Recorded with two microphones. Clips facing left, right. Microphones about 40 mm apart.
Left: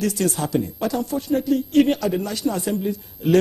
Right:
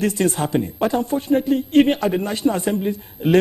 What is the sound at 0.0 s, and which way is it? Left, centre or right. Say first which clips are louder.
A man's voice: right 3 dB; right.